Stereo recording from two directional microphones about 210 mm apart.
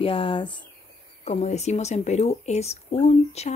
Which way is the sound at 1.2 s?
30° left (ahead or behind).